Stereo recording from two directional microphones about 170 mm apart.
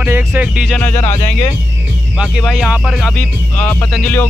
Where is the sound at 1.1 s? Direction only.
40° left (ahead or behind).